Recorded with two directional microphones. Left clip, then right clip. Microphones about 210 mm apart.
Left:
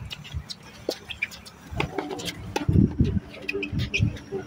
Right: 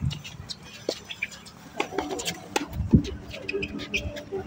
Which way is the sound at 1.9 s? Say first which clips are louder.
Right 1 dB; 30° right (ahead or behind).